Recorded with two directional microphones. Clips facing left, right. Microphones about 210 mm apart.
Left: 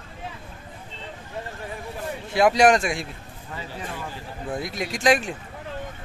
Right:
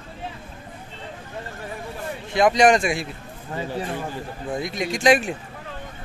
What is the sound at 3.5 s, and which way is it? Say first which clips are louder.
Speech: right 7 dB; 40° right (ahead or behind).